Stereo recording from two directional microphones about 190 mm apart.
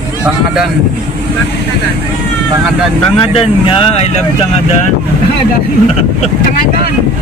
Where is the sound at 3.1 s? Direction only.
30° left (ahead or behind).